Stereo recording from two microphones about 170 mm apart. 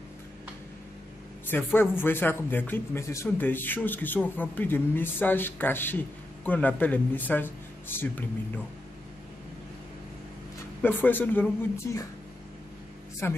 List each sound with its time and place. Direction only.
1.5 s speech: 10° left (ahead or behind)
10.8 s speech: 10° left (ahead or behind)
13.2 s speech: 15° left (ahead or behind)